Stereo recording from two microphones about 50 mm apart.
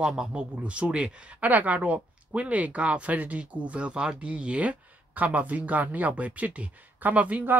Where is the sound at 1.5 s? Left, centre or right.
Right.